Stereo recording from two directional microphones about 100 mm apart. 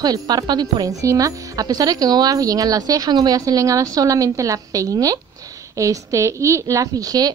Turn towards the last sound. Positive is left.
turn(degrees=-40)  # may be behind; listen again after turning